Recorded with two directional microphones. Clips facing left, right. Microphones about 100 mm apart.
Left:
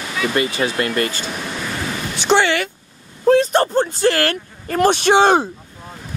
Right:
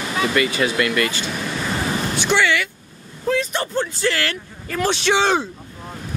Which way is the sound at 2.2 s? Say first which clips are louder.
Left 4 dB; 30° left (ahead or behind).